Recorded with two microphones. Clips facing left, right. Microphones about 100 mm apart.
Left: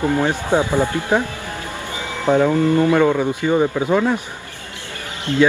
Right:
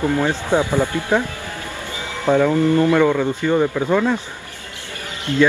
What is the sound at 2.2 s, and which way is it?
Speech, 15° left (ahead or behind).